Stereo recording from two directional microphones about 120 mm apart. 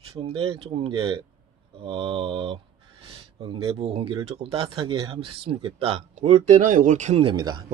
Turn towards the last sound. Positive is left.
turn(degrees=-40)  # may be behind; listen again after turning